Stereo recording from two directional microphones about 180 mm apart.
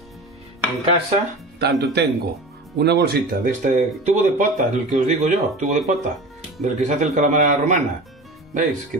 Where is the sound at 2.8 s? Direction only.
65° right (ahead or behind).